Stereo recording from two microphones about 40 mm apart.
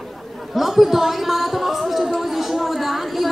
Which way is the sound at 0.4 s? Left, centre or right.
Centre.